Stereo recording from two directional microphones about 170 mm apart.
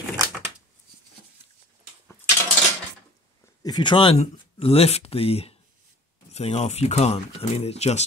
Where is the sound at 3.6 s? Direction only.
25° left (ahead or behind).